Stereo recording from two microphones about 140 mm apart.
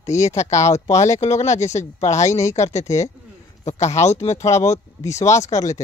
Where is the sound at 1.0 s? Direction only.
55° left (ahead or behind).